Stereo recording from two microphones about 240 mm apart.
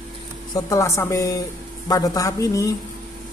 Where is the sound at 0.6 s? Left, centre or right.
Centre.